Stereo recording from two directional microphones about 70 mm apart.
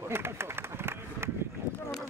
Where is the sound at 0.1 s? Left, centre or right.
Right.